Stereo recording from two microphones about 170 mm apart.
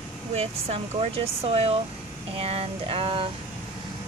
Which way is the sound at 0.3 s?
35° right (ahead or behind).